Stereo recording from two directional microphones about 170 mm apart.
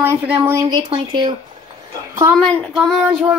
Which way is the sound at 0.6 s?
25° right (ahead or behind).